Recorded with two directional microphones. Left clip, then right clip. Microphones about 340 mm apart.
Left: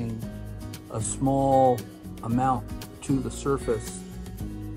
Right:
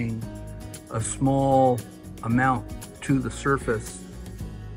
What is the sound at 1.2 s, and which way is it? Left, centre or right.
Music, centre.